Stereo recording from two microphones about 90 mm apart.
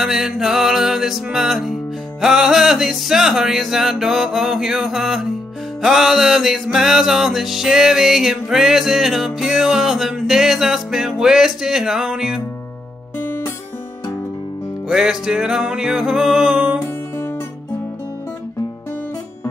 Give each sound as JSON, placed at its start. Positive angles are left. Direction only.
{"t": 0.0, "sound": "music", "side_deg": -5}
{"t": 13.2, "sound": "music", "side_deg": 25}
{"t": 14.9, "sound": "music", "side_deg": -5}